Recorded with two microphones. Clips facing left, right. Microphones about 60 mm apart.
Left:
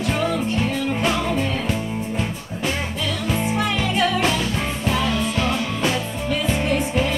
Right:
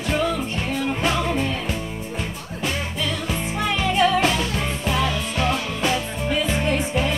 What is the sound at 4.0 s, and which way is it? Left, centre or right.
Music, centre.